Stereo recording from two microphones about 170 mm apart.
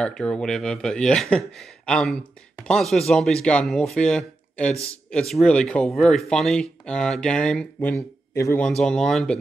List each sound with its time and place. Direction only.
0.0 s speech: 5° left (ahead or behind)
7.9 s speech: 15° left (ahead or behind)
8.6 s speech: 5° left (ahead or behind)